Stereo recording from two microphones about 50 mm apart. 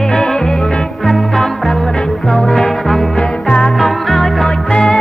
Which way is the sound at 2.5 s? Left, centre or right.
Centre.